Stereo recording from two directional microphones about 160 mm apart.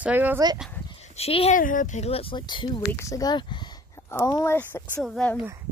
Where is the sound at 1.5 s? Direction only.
55° left (ahead or behind); by 2.8 s 30° left (ahead or behind).